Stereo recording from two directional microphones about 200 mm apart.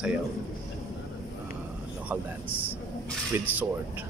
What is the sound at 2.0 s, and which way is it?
Speech, 10° right (ahead or behind).